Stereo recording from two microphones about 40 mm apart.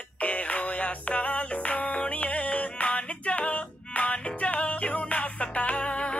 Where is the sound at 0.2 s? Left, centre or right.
Left.